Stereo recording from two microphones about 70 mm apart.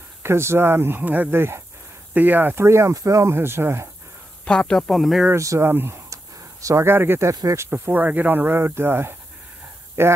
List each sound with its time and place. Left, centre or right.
0.2 s speech: right
2.6 s speech: right
3.3 s speech: right
4.5 s a woman's voice: centre
5.3 s speech: right
5.6 s speech: right
6.6 s speech: right
6.9 s speech: right